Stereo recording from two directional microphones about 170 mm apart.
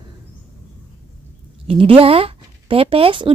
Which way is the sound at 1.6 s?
35° right (ahead or behind).